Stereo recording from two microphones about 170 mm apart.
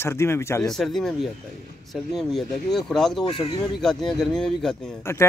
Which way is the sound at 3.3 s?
25° left (ahead or behind).